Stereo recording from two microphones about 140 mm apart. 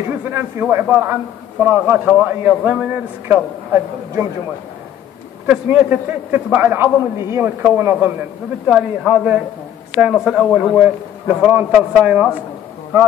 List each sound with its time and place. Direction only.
0.2 s a man's voice: 15° right (ahead or behind)
5.5 s a man's voice: 10° right (ahead or behind)
10.8 s a man's voice: 10° right (ahead or behind)